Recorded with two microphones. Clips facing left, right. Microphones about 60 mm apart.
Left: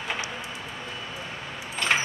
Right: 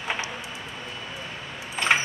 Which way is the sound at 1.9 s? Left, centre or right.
Centre.